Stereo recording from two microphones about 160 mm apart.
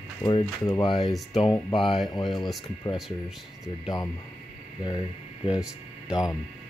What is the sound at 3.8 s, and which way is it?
Speech, 25° left (ahead or behind).